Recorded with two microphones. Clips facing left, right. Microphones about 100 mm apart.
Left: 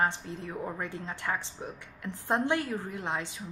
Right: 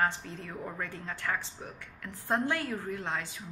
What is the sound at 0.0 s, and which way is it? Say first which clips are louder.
A woman's voice: left 1 dB; 20° left (ahead or behind).